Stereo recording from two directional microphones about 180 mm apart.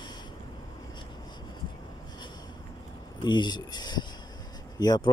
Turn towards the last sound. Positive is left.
turn(degrees=20)  # may be behind; listen again after turning